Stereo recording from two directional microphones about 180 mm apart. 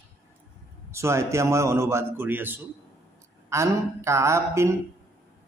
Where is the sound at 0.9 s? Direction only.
15° right (ahead or behind).